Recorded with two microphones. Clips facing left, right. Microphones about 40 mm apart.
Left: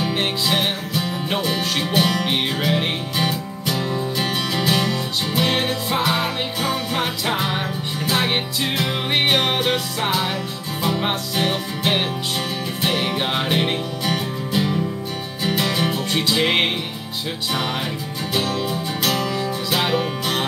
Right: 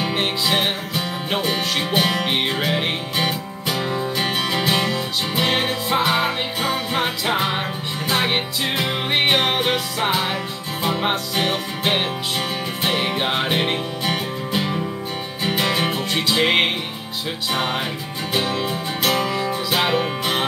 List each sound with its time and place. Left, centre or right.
0.1 s music: centre
16.1 s music: centre